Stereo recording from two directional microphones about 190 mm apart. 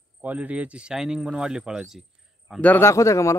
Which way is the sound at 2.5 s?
10° left (ahead or behind).